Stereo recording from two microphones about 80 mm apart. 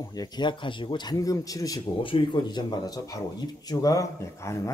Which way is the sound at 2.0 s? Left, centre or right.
Left.